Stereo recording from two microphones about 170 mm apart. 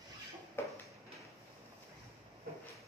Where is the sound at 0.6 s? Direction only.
15° left (ahead or behind).